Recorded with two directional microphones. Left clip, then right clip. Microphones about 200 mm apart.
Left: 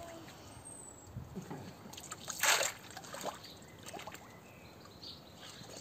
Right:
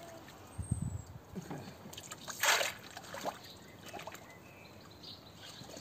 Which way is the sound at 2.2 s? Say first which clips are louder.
Right 1 dB; 5° left (ahead or behind).